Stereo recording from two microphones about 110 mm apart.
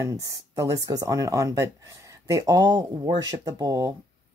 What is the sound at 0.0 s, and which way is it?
Speech, 30° right (ahead or behind).